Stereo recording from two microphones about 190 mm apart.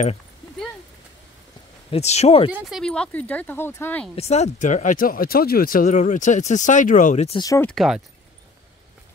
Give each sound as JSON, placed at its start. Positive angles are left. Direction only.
{"t": 1.9, "sound": "speech", "side_deg": 35}
{"t": 2.5, "sound": "speech", "side_deg": 0}
{"t": 4.1, "sound": "speech", "side_deg": 35}
{"t": 7.3, "sound": "speech", "side_deg": 15}
{"t": 7.7, "sound": "speech", "side_deg": 0}